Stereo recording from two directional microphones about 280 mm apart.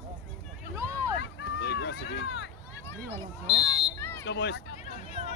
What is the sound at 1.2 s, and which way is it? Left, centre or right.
Run, left.